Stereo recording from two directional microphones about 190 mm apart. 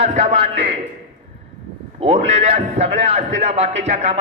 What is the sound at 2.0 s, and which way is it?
A man's voice, 35° right (ahead or behind).